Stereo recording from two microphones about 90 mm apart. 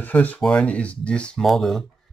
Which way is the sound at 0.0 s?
20° left (ahead or behind).